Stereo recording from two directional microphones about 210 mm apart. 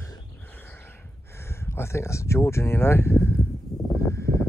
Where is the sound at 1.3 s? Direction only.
10° left (ahead or behind).